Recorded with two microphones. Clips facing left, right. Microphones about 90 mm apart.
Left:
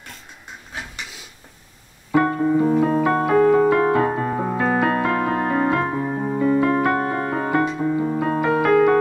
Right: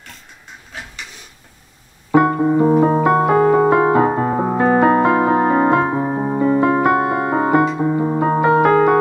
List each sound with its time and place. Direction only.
2.1 s keyboard: 15° right (ahead or behind)
2.6 s music: 25° right (ahead or behind)
3.0 s keyboard: 15° right (ahead or behind)
3.7 s piano: 25° right (ahead or behind)
4.8 s music: 20° right (ahead or behind)